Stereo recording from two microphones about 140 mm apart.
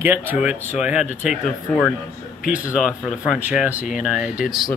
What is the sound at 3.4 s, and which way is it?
Speech, 10° right (ahead or behind).